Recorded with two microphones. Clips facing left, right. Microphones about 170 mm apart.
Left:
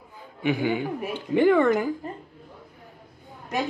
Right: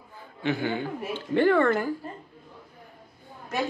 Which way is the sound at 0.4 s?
15° left (ahead or behind).